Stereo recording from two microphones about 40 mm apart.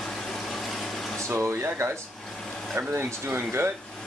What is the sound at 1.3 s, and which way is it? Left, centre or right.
Speech, right.